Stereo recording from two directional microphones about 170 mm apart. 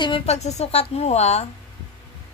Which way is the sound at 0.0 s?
35° left (ahead or behind).